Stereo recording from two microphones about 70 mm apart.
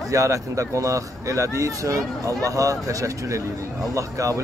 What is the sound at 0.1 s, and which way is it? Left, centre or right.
Speech, right.